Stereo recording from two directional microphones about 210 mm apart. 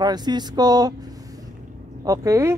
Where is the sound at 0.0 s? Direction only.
20° right (ahead or behind).